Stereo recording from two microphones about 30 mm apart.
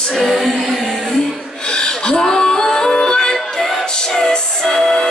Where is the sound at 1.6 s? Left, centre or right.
Left.